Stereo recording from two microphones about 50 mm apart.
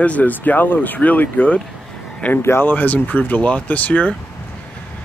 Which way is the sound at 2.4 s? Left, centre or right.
Left.